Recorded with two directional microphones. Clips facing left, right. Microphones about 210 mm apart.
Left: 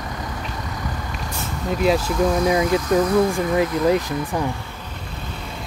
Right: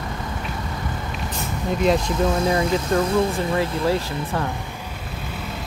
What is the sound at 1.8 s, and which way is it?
Speech, 5° left (ahead or behind).